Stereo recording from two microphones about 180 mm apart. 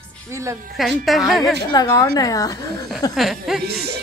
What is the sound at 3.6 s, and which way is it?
Speech, 60° right (ahead or behind).